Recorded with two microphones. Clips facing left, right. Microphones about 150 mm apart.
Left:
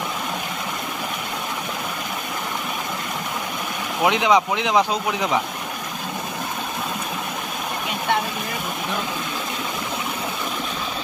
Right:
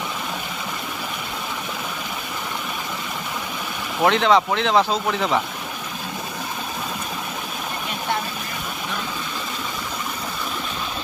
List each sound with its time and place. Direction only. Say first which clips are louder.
4.0 s speech: right 1 dB; 10° left (ahead or behind)